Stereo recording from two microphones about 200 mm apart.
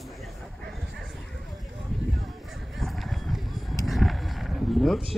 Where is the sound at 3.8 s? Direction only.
Centre (ahead or behind).